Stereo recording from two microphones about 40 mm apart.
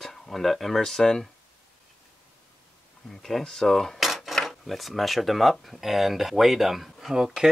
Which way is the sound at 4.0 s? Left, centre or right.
Centre.